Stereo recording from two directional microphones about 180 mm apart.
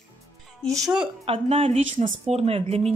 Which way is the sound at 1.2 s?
30° right (ahead or behind).